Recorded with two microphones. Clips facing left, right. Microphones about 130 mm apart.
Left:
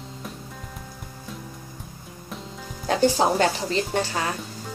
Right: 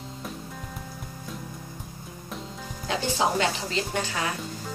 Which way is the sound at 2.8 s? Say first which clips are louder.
Left 6 dB; 40° left (ahead or behind).